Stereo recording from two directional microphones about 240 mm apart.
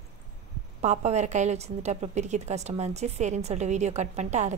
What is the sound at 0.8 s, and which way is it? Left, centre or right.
A woman's voice, right.